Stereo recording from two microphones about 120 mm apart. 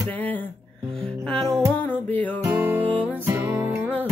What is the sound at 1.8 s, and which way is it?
Music, 15° left (ahead or behind).